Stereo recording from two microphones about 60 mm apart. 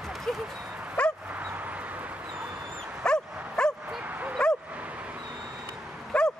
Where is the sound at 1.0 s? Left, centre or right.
Centre.